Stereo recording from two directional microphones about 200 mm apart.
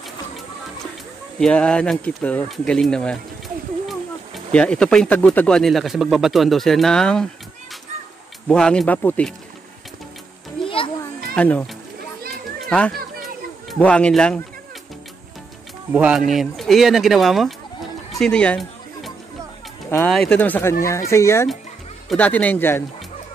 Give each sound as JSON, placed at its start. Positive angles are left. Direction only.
{"t": 1.4, "sound": "speech", "side_deg": 5}
{"t": 4.5, "sound": "speech", "side_deg": 5}
{"t": 8.5, "sound": "speech", "side_deg": 5}
{"t": 10.6, "sound": "children playing", "side_deg": 25}
{"t": 11.3, "sound": "a child's voice", "side_deg": 5}
{"t": 13.2, "sound": "a sound", "side_deg": 5}
{"t": 15.9, "sound": "speech", "side_deg": -5}
{"t": 18.1, "sound": "music", "side_deg": 5}
{"t": 19.9, "sound": "speech", "side_deg": 5}